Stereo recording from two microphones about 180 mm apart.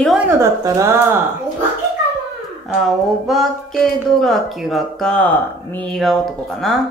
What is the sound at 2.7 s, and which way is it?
Speech, centre (ahead or behind).